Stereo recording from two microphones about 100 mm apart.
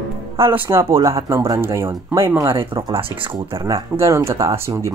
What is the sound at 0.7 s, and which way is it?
Speech, 25° right (ahead or behind).